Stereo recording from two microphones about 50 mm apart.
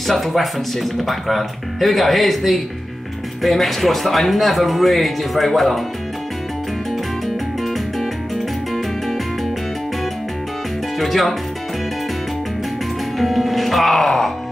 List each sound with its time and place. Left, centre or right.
0.0 s speech: centre
11.0 s speech: centre
13.2 s speech: centre